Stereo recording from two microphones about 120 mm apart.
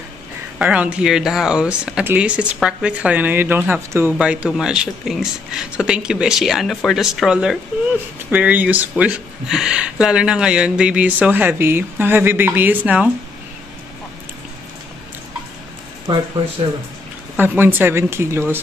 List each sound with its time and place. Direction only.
0.6 s speech: 10° right (ahead or behind)
17.4 s speech: 15° right (ahead or behind)